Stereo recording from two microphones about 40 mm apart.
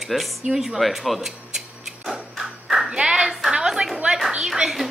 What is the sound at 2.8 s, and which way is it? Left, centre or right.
Clapping, right.